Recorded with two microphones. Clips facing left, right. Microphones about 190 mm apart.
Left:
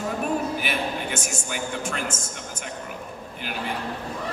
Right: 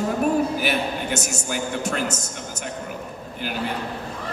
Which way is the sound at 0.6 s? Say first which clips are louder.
Right 4 dB; 40° right (ahead or behind).